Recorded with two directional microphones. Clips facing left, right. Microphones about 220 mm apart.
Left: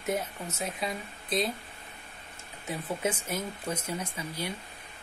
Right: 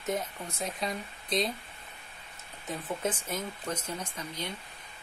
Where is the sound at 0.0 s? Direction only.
10° left (ahead or behind).